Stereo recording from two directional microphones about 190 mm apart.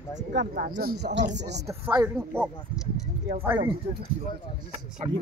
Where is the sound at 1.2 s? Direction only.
40° right (ahead or behind).